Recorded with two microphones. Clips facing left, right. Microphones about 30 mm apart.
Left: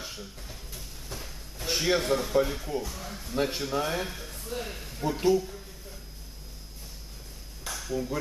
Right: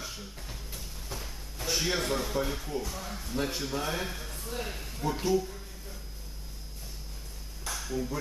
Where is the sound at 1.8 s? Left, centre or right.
Centre.